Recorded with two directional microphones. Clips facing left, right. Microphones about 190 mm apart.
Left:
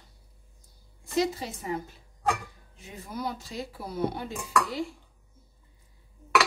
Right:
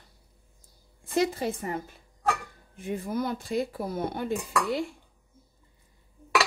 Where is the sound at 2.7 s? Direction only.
55° right (ahead or behind).